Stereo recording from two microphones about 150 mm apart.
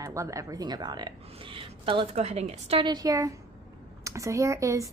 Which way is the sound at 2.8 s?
25° right (ahead or behind).